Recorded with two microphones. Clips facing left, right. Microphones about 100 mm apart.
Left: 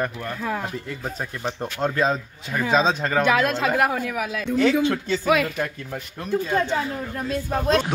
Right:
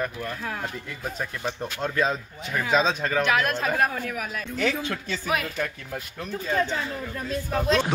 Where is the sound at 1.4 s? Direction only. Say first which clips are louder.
Left 5 dB; 30° left (ahead or behind).